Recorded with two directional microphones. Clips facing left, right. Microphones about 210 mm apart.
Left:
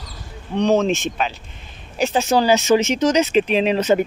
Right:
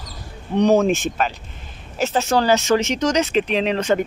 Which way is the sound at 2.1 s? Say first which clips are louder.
Left 1 dB; 15° left (ahead or behind).